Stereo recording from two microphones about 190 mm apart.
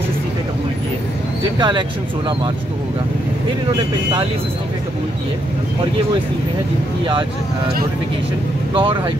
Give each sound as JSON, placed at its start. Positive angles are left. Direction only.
{"t": 1.6, "sound": "speech", "side_deg": -25}
{"t": 8.7, "sound": "speech", "side_deg": -25}